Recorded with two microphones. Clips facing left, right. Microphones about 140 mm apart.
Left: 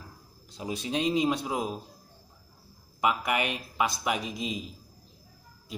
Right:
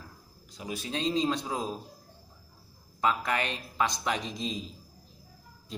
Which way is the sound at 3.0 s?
15° left (ahead or behind).